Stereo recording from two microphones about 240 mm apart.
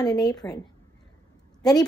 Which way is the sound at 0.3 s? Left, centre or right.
Centre.